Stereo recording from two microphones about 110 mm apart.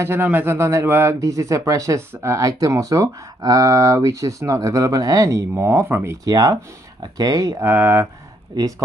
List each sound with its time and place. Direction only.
0.0 s a man's voice: 20° right (ahead or behind)
6.2 s speech: 35° right (ahead or behind)
7.6 s a man's voice: 20° right (ahead or behind)
8.5 s speech: 30° right (ahead or behind)